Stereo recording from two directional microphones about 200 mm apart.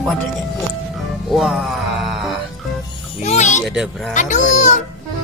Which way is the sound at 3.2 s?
35° left (ahead or behind).